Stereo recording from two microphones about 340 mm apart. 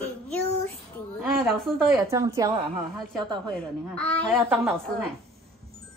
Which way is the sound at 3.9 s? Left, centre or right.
Centre.